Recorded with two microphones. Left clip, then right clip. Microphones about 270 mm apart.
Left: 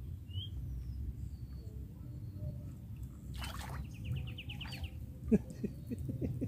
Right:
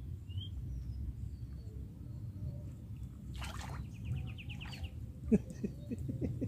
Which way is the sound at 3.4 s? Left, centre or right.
Centre.